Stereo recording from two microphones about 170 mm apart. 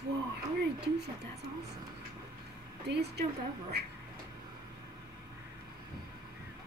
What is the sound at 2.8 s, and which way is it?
A woman's voice, 75° right (ahead or behind).